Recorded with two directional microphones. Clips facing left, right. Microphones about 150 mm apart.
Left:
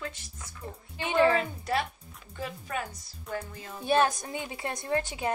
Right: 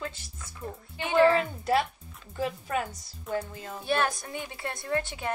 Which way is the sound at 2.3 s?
35° right (ahead or behind).